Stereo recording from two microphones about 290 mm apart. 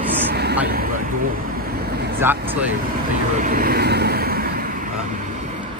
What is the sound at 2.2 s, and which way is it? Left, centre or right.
Speech, centre.